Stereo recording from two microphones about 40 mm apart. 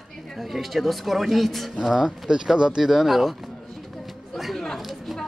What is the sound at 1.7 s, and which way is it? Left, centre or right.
Speech, centre.